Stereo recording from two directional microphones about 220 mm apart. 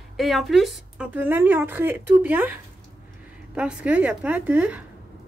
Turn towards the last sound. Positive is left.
turn(degrees=-5)  # may be behind; listen again after turning